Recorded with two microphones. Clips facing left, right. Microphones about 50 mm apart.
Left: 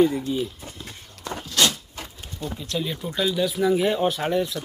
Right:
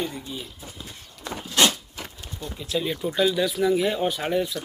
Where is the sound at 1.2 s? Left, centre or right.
Centre.